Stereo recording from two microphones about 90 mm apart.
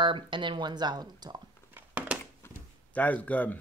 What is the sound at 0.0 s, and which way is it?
Speech, 65° right (ahead or behind).